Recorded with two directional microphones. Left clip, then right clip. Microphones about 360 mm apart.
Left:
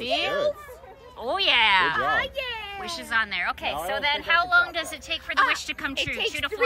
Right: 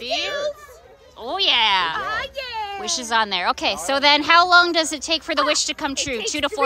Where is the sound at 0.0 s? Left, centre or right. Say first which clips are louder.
Right 1 dB; centre.